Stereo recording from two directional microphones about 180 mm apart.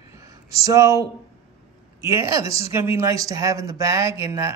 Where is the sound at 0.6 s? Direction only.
20° right (ahead or behind).